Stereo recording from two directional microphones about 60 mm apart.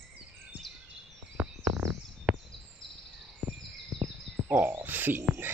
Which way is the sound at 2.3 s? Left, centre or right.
Centre.